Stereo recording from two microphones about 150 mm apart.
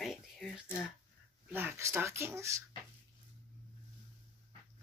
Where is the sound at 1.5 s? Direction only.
15° right (ahead or behind).